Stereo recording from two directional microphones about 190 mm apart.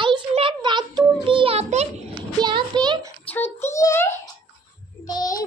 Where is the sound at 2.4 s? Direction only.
25° right (ahead or behind).